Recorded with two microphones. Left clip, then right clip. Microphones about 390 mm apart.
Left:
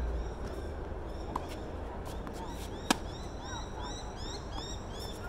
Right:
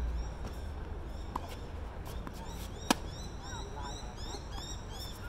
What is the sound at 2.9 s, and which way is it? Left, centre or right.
Chop, centre.